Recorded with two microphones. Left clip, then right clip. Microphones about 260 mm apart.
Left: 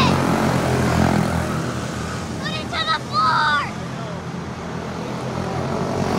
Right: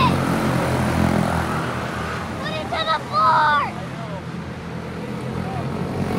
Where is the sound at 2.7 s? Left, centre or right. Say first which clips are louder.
Even; centre.